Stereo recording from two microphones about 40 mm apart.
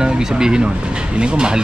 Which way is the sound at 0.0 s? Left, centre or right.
Centre.